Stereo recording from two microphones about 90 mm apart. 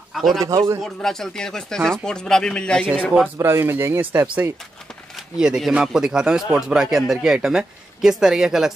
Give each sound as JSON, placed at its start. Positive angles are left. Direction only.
{"t": 0.1, "sound": "a sound", "side_deg": 0}
{"t": 0.4, "sound": "a man's voice", "side_deg": -40}
{"t": 0.8, "sound": "speech", "side_deg": 5}
{"t": 3.3, "sound": "speech", "side_deg": -25}
{"t": 5.1, "sound": "a sound", "side_deg": -10}
{"t": 5.6, "sound": "speech", "side_deg": -5}